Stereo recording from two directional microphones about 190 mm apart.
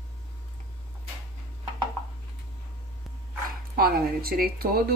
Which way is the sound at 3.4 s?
50° right (ahead or behind).